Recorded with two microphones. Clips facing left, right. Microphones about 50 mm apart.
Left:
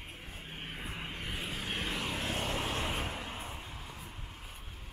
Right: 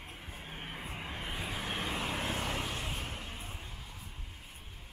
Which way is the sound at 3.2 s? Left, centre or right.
Left.